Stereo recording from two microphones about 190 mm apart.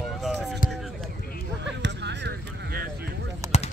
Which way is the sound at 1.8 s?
65° right (ahead or behind).